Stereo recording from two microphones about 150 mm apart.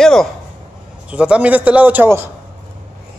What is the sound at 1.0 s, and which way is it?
A man's voice, 10° right (ahead or behind).